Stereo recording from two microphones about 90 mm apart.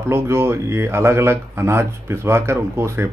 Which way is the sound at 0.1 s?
30° right (ahead or behind).